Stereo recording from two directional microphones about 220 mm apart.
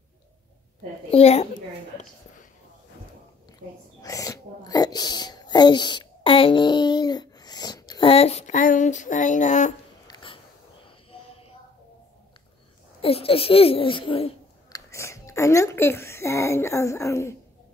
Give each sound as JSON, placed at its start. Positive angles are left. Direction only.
{"t": 1.1, "sound": "a child's voice", "side_deg": 30}
{"t": 4.0, "sound": "speech", "side_deg": 15}
{"t": 10.0, "sound": "wheeze", "side_deg": 20}
{"t": 13.0, "sound": "speech", "side_deg": 25}
{"t": 14.9, "sound": "speech", "side_deg": 15}